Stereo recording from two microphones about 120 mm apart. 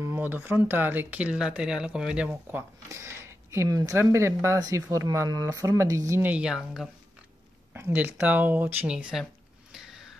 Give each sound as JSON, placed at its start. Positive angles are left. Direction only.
{"t": 0.0, "sound": "speech", "side_deg": -15}
{"t": 2.9, "sound": "speech", "side_deg": -25}
{"t": 6.3, "sound": "speech", "side_deg": -5}
{"t": 7.7, "sound": "speech", "side_deg": -15}
{"t": 8.9, "sound": "speech", "side_deg": -5}
{"t": 9.7, "sound": "a sound", "side_deg": -5}